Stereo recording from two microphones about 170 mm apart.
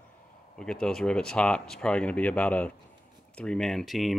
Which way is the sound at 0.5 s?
5° left (ahead or behind).